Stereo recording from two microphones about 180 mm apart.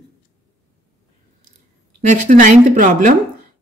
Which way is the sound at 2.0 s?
40° right (ahead or behind).